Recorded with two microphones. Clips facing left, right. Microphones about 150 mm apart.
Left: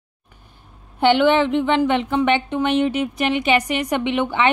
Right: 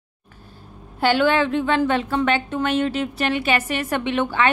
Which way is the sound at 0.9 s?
20° left (ahead or behind).